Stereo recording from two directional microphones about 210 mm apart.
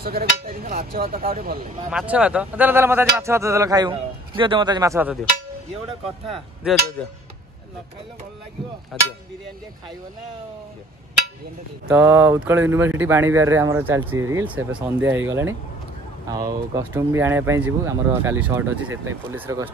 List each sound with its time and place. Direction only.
0.0 s speech: 45° right (ahead or behind)
1.9 s speech: 5° right (ahead or behind)
6.6 s speech: centre (ahead or behind)
8.9 s speech: centre (ahead or behind)
11.9 s speech: 10° right (ahead or behind)